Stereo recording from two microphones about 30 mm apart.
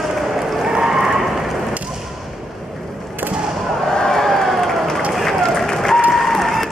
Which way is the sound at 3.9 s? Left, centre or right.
Centre.